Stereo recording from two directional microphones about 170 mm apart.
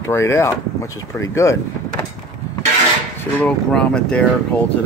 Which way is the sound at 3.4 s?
5° left (ahead or behind).